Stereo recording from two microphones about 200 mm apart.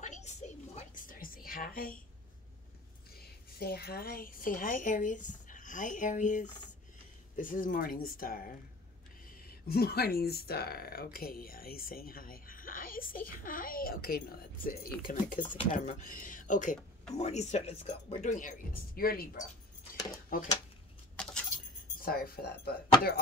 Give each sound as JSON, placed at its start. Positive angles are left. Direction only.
{"t": 0.0, "sound": "a sound", "side_deg": 35}
{"t": 3.2, "sound": "a woman's voice", "side_deg": 50}
{"t": 21.2, "sound": "keys jangling", "side_deg": 5}
{"t": 22.0, "sound": "speech", "side_deg": 45}